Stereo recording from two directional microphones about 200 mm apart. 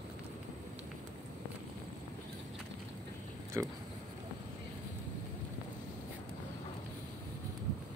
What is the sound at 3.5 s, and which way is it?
Speech, 15° right (ahead or behind).